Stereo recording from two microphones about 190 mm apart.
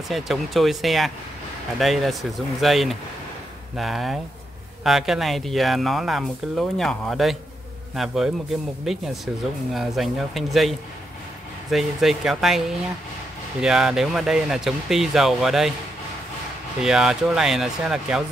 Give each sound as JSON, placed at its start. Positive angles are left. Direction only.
{"t": 0.1, "sound": "speech", "side_deg": 0}
{"t": 16.8, "sound": "speech", "side_deg": -5}